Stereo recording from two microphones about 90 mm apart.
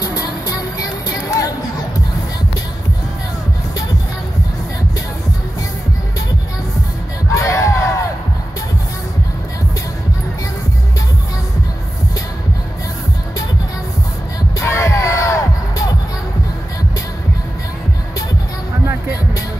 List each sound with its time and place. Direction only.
0.0 s music: 45° left (ahead or behind)
7.3 s crowd: 35° left (ahead or behind)
14.6 s crowd: 35° left (ahead or behind)